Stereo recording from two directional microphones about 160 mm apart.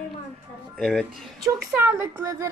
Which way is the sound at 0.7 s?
Centre (ahead or behind).